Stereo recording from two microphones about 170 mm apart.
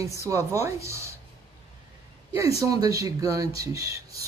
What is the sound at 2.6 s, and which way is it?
Speech, 20° right (ahead or behind).